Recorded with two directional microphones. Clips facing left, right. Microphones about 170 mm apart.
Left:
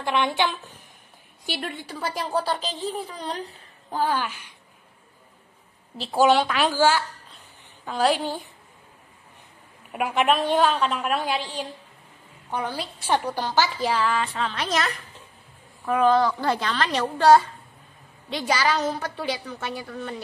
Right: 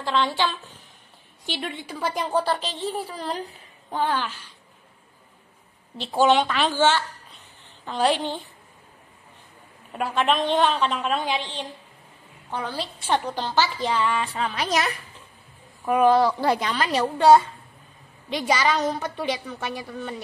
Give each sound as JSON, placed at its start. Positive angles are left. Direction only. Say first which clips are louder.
{"t": 0.0, "sound": "a woman's voice", "louder": "even", "side_deg": 20}
{"t": 1.4, "sound": "a woman's voice", "louder": "even", "side_deg": 5}
{"t": 3.9, "sound": "a woman's voice", "louder": "even", "side_deg": 5}
{"t": 5.9, "sound": "a woman's voice", "louder": "even", "side_deg": 5}
{"t": 9.9, "sound": "a woman's voice", "louder": "left 1 dB", "side_deg": 10}
{"t": 13.8, "sound": "a woman's voice", "louder": "even", "side_deg": 0}
{"t": 15.8, "sound": "a woman's voice", "louder": "right 2 dB", "side_deg": -15}